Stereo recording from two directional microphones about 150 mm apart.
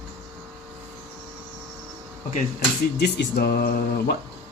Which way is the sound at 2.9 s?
90° left.